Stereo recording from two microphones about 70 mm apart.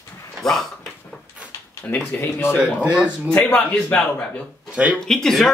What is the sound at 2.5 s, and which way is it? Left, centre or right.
Speech, centre.